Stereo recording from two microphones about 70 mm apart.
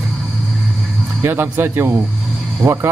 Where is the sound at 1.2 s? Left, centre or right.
Right.